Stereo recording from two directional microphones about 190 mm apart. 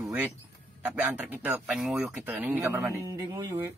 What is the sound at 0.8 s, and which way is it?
Speech, 10° right (ahead or behind).